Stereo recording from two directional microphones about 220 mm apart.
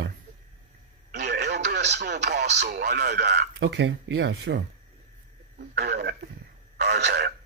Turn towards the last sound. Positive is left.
turn(degrees=-45)  # may be behind; listen again after turning